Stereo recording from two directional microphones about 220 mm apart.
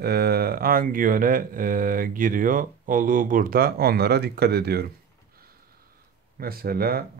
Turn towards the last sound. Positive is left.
turn(degrees=-45)  # may be behind; listen again after turning